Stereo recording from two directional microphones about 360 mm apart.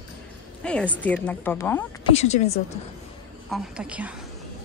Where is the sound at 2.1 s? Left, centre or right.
Centre.